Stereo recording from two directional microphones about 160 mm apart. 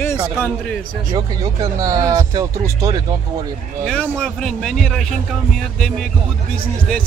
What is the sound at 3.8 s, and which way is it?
A man's voice, centre (ahead or behind).